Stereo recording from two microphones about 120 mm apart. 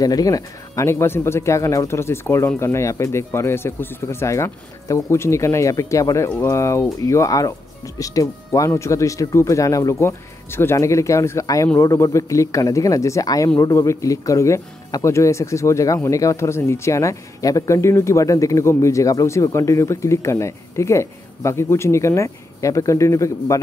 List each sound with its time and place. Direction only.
0.0 s speech: 30° left (ahead or behind)